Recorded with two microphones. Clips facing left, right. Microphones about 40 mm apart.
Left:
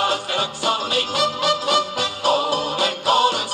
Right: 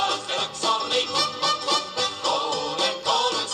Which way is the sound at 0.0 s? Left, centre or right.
Left.